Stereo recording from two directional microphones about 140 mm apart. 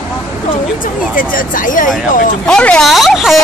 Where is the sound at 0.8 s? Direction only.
75° left (ahead or behind).